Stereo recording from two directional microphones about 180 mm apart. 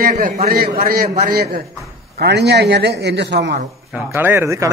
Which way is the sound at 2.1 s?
70° right (ahead or behind).